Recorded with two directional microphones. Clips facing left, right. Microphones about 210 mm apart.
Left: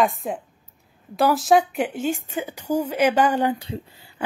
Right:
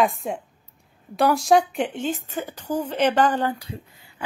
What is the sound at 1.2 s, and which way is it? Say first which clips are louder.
Speech: even; centre (ahead or behind).